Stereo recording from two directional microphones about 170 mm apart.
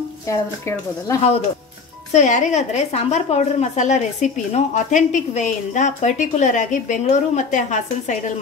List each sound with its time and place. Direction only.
0.3 s speech: 20° left (ahead or behind)
2.1 s a woman's voice: 45° left (ahead or behind)